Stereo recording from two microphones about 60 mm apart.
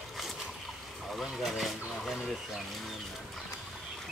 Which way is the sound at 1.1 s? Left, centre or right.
Centre.